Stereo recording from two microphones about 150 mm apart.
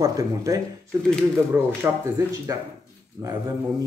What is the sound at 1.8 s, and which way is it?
A man's voice, 20° right (ahead or behind).